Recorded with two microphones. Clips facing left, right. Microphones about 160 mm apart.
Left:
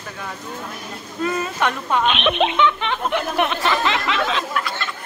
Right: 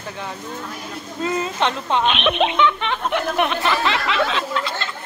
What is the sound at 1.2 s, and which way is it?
Speech, 25° right (ahead or behind).